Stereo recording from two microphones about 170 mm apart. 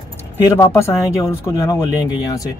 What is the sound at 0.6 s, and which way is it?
Speech, 15° left (ahead or behind).